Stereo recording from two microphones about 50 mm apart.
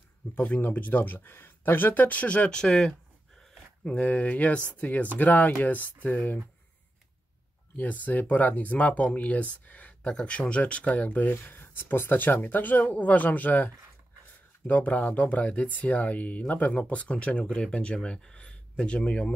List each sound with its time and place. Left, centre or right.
0.4 s speech: left; by 2.9 s centre
3.8 s speech: left
7.7 s speech: left
14.7 s speech: left